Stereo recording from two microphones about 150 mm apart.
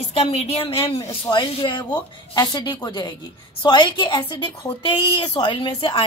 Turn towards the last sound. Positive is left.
turn(degrees=35)  # may be behind; listen again after turning